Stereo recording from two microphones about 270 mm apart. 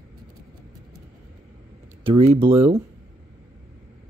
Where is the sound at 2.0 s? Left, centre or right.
Centre.